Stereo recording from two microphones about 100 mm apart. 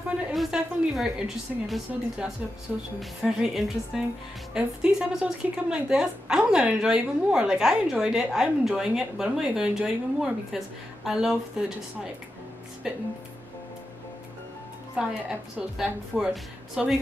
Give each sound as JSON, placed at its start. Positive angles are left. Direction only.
{"t": 0.3, "sound": "a woman's voice", "side_deg": 0}
{"t": 15.8, "sound": "a woman's voice", "side_deg": -5}